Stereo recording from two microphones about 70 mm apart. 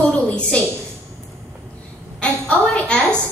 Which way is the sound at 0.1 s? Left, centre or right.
Centre.